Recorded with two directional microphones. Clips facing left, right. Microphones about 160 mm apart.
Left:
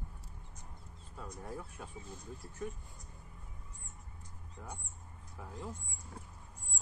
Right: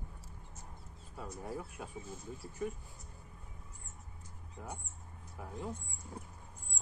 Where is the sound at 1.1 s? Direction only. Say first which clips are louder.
Right 2 dB; 5° right (ahead or behind).